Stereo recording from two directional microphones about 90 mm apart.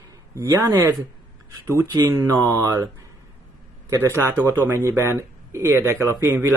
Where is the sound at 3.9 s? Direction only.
30° right (ahead or behind).